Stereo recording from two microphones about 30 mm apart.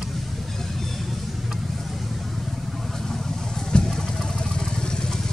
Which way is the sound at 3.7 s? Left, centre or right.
Left.